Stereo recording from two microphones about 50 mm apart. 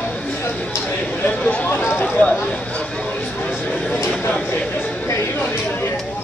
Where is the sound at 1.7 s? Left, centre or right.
Left.